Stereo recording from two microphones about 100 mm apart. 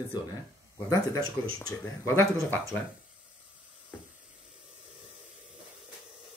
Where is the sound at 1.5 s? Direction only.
30° left (ahead or behind).